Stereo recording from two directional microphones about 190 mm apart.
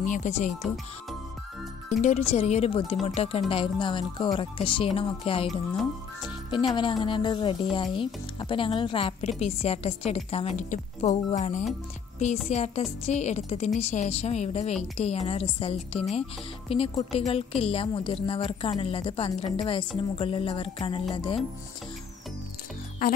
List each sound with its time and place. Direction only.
0.0 s a woman's voice: 40° left (ahead or behind)
1.9 s a woman's voice: 40° left (ahead or behind)